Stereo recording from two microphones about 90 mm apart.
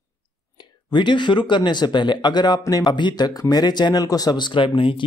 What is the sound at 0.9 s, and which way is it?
Speech, 60° left (ahead or behind).